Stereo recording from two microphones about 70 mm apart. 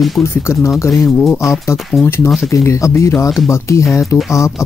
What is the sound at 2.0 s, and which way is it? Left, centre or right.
Speech, left.